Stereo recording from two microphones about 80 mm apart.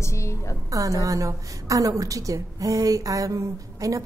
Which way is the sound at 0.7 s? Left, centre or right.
Right.